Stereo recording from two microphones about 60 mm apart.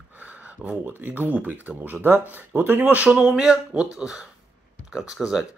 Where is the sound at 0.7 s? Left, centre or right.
Right.